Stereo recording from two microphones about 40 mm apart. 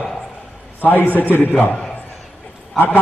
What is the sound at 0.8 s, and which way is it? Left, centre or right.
A man's voice, left.